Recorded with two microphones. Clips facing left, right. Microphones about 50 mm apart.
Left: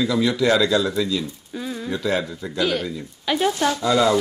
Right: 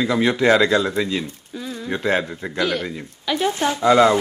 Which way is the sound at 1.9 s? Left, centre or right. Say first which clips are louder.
Right 3 dB; right.